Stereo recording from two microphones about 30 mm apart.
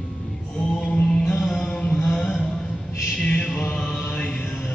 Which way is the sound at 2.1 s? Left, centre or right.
Left.